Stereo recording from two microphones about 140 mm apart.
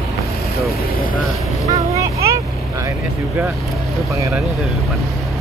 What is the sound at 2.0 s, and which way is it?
Vehicle, 20° right (ahead or behind).